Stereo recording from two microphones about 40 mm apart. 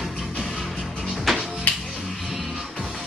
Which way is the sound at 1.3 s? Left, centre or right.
Centre.